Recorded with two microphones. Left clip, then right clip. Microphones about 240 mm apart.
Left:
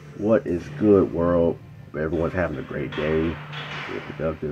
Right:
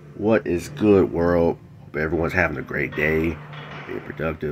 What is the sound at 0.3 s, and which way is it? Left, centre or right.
Speech, right.